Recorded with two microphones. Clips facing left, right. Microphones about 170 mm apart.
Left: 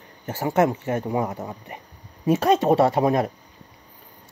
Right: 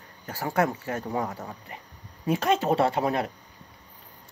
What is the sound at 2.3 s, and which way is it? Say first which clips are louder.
Speech: left 5 dB; 30° left (ahead or behind).